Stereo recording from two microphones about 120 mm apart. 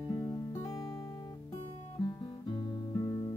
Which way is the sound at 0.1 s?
30° left (ahead or behind).